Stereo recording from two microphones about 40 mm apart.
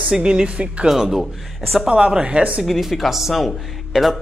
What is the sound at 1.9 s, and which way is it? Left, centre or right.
Speech, right.